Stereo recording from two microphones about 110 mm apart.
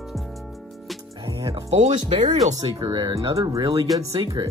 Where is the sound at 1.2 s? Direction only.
50° right (ahead or behind).